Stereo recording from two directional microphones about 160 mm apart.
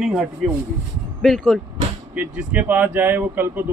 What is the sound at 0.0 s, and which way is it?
Speech, 5° right (ahead or behind).